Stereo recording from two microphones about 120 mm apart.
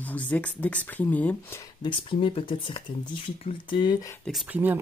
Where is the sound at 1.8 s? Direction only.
45° left (ahead or behind).